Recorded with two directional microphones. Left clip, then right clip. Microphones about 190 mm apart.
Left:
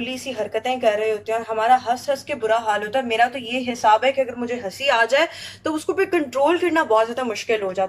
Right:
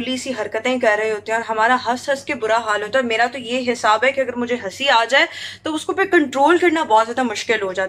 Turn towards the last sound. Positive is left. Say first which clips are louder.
# right 2 dB
turn(degrees=0)  # may be behind; listen again after turning